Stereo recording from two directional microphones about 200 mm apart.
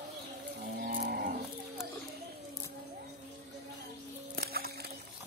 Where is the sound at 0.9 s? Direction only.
50° right (ahead or behind).